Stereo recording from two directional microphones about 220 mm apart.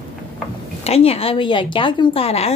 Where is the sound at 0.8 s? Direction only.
30° left (ahead or behind).